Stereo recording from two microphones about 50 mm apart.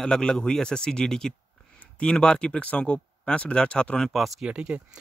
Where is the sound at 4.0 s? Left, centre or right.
Centre.